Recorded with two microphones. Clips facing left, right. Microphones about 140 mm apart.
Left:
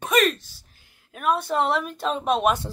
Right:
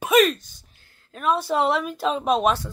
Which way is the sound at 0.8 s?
15° left (ahead or behind).